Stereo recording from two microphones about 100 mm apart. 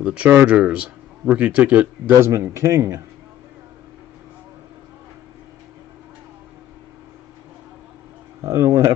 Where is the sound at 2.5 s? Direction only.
30° right (ahead or behind).